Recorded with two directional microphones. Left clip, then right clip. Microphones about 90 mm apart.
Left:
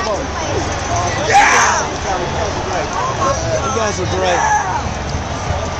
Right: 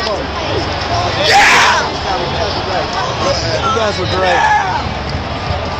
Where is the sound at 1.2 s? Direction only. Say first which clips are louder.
Right 2 dB; 20° right (ahead or behind).